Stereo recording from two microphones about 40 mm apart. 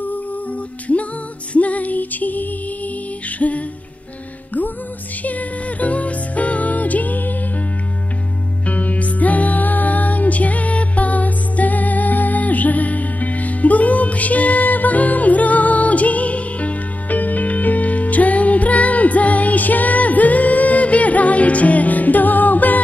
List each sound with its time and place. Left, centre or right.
1.5 s music: left
5.2 s music: left
8.6 s music: left